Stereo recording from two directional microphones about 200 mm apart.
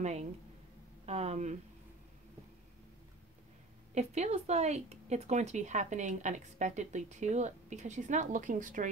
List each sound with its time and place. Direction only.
0.0 s speech: 35° right (ahead or behind)
3.9 s speech: 35° right (ahead or behind)